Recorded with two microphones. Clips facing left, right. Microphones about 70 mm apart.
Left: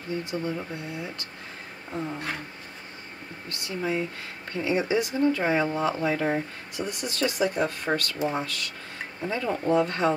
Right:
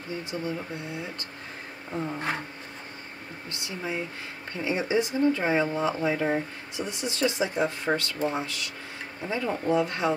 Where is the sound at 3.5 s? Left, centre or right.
Right.